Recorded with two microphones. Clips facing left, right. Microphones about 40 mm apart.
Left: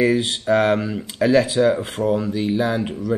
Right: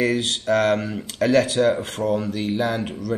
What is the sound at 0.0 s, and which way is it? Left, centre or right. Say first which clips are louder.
Speech: left 3 dB; centre.